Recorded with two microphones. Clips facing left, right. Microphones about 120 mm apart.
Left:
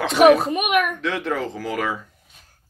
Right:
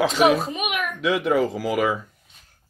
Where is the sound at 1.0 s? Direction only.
10° right (ahead or behind).